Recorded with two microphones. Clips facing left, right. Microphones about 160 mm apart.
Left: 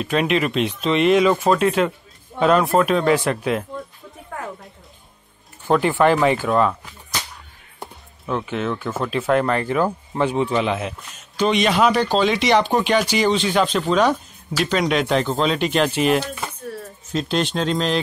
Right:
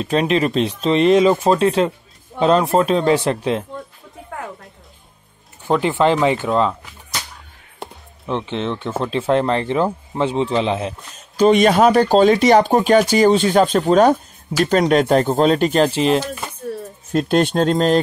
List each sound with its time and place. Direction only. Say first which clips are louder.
0.0 s speech: right 3 dB; 30° right (ahead or behind)
5.7 s speech: even; 20° right (ahead or behind)
7.8 s speech: right 2 dB; 25° right (ahead or behind)
17.1 s speech: right 6 dB; 50° right (ahead or behind)